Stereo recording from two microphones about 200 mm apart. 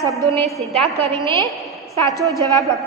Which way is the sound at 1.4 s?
Centre (ahead or behind).